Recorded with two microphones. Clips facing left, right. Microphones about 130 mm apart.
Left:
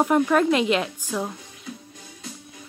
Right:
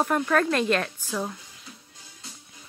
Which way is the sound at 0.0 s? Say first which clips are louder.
Left 4 dB; 15° left (ahead or behind).